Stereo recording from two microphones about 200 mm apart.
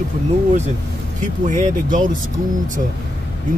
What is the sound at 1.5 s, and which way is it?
Speech, 40° right (ahead or behind).